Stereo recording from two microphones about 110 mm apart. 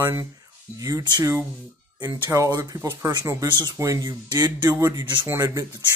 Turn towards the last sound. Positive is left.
turn(degrees=-30)  # may be behind; listen again after turning